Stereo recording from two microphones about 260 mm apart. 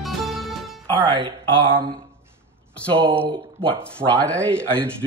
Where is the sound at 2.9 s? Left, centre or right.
Right.